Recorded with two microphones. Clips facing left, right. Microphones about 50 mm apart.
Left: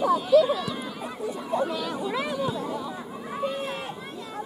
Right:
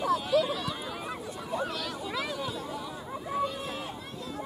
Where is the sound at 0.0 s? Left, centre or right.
Centre.